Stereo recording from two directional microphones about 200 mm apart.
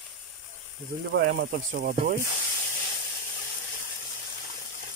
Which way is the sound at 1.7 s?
45° right (ahead or behind).